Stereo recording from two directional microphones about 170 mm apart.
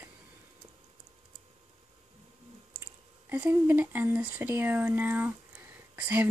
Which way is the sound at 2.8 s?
10° right (ahead or behind).